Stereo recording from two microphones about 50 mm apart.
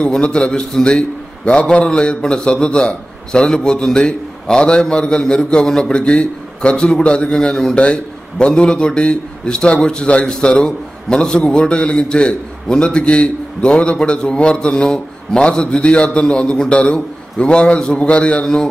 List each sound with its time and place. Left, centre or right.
0.0 s a man's voice: centre